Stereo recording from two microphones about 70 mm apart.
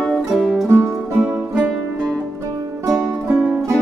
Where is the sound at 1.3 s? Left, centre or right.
Right.